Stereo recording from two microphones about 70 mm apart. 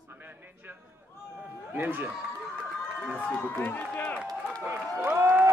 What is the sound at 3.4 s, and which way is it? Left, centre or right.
Speech, left.